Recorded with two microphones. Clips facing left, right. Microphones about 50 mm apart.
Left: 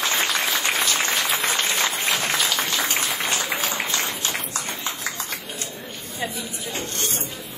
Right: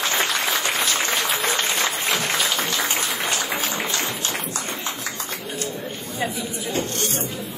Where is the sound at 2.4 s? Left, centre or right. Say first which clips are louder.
Right 1 dB; right.